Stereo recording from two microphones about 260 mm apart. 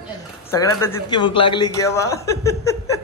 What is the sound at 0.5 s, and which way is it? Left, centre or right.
A man's voice, centre.